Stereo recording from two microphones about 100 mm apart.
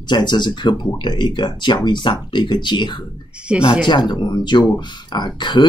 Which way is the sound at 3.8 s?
50° left (ahead or behind).